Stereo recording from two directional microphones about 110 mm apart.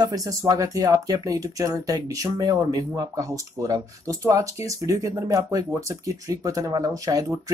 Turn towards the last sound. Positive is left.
turn(degrees=-35)  # may be behind; listen again after turning